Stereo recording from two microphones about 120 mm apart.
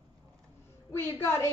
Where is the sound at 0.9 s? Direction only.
20° left (ahead or behind).